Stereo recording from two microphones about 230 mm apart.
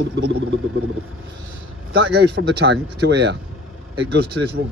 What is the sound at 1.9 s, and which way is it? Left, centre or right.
Speech, right.